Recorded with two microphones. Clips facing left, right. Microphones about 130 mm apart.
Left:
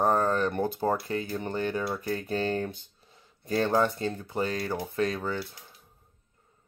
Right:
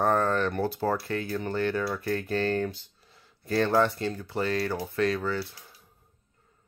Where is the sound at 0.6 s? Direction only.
20° left (ahead or behind).